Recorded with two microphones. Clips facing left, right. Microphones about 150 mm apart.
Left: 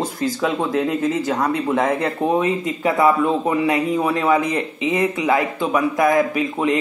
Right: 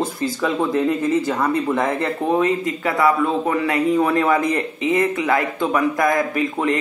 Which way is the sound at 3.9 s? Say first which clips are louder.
Right 1 dB; 10° left (ahead or behind).